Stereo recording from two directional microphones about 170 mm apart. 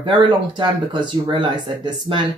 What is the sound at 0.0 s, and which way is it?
Speech, 30° right (ahead or behind).